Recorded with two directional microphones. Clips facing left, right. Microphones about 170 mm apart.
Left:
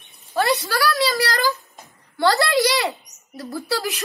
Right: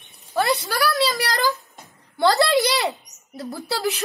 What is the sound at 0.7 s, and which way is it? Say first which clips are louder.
A woman's voice: even; 20° right (ahead or behind).